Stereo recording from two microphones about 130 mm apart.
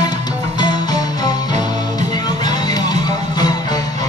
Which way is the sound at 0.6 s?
35° left (ahead or behind).